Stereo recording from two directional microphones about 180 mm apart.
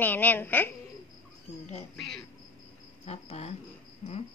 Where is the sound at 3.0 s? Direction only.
35° left (ahead or behind).